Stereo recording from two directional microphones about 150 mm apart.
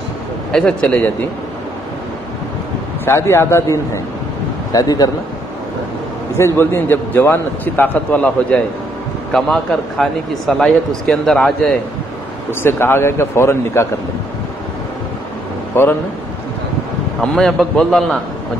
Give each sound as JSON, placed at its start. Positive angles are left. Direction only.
{"t": 0.5, "sound": "a man's voice", "side_deg": 5}
{"t": 3.1, "sound": "a man's voice", "side_deg": 15}
{"t": 6.3, "sound": "a man's voice", "side_deg": 15}
{"t": 12.6, "sound": "a man's voice", "side_deg": 15}
{"t": 15.7, "sound": "speech", "side_deg": 15}
{"t": 17.2, "sound": "speech", "side_deg": 5}